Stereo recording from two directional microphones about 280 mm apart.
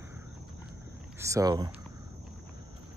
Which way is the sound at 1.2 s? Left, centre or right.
Centre.